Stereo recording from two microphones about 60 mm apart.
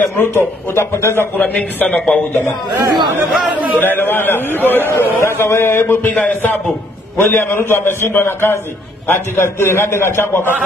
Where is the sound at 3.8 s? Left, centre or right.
Left.